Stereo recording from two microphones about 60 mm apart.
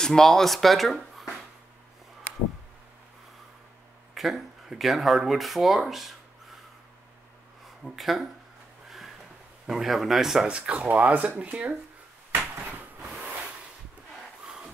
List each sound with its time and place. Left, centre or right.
0.0 s speech: centre
4.1 s speech: centre
7.8 s speech: centre
8.8 s a sound: centre
9.7 s speech: centre
10.5 s speech: right
14.4 s crowd: centre